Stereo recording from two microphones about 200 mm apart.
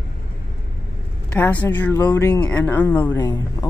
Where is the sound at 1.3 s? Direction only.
10° left (ahead or behind).